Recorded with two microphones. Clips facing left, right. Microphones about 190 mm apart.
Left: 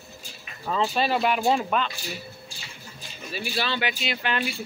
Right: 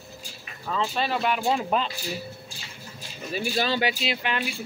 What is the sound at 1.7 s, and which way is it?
Speech, 30° right (ahead or behind).